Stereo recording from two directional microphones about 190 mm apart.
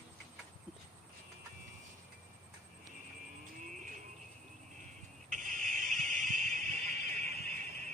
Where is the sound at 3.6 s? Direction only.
40° right (ahead or behind).